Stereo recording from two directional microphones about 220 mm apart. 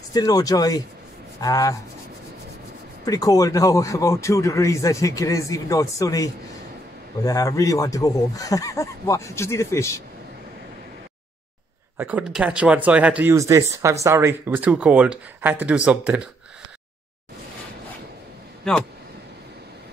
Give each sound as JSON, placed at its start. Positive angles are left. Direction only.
{"t": 0.1, "sound": "speech", "side_deg": 15}
{"t": 3.1, "sound": "speech", "side_deg": 15}
{"t": 12.0, "sound": "speech", "side_deg": -5}
{"t": 18.6, "sound": "speech", "side_deg": 5}